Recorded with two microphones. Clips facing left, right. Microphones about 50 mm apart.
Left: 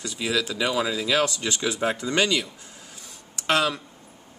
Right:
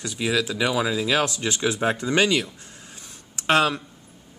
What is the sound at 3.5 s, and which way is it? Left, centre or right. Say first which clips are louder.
Speech: right 3 dB; right.